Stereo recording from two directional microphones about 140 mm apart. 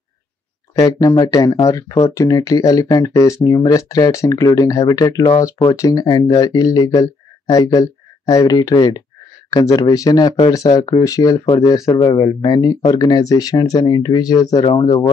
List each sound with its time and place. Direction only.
0.7 s speech: 25° left (ahead or behind)